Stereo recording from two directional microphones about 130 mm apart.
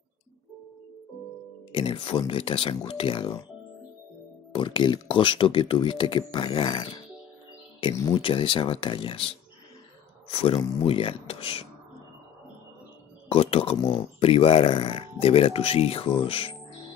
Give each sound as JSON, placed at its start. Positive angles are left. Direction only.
{"t": 1.7, "sound": "speech", "side_deg": 40}
{"t": 4.6, "sound": "speech", "side_deg": 40}
{"t": 8.1, "sound": "speech", "side_deg": 40}
{"t": 10.3, "sound": "speech", "side_deg": 45}
{"t": 13.3, "sound": "speech", "side_deg": 50}